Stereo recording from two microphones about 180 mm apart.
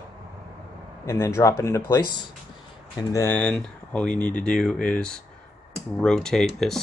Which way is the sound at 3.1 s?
10° left (ahead or behind).